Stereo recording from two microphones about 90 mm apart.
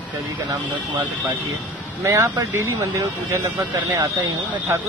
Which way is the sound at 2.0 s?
35° right (ahead or behind).